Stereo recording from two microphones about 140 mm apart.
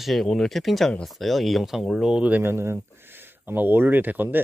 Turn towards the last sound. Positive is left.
turn(degrees=-15)  # may be behind; listen again after turning